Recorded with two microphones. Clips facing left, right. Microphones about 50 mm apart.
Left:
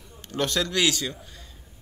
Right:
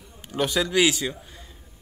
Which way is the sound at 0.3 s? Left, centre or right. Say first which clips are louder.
Right 2 dB; centre.